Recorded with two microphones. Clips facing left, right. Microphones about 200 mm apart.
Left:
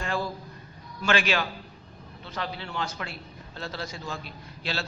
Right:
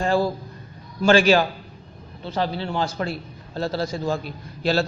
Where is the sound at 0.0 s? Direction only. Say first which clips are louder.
Right 10 dB; 35° right (ahead or behind).